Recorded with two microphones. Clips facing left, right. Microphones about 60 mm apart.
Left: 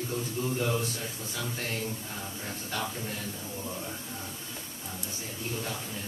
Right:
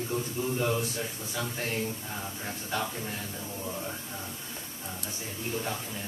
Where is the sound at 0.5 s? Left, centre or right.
Centre.